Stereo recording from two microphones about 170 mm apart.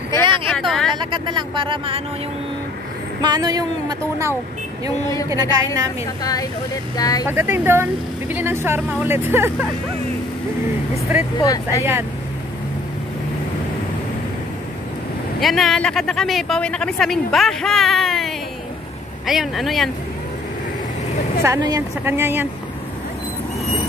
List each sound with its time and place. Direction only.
0.2 s vehicle: 30° right (ahead or behind)
0.5 s vehicle: centre (ahead or behind)
0.9 s speech: 25° right (ahead or behind)
3.2 s speech: 25° right (ahead or behind)
5.3 s speech: 20° right (ahead or behind)
7.0 s speech: 20° left (ahead or behind)
7.2 s a woman's voice: 15° right (ahead or behind)
11.3 s speech: 20° left (ahead or behind)
15.4 s speech: centre (ahead or behind)
21.4 s a woman's voice: 20° right (ahead or behind)